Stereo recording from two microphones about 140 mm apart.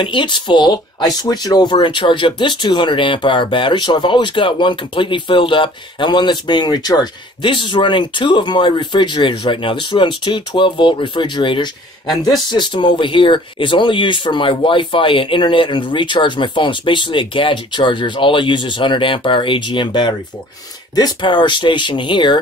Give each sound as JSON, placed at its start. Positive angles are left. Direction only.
{"t": 0.0, "sound": "speech", "side_deg": 35}